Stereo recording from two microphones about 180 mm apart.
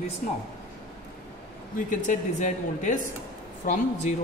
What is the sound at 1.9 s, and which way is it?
A man's voice, 45° left (ahead or behind).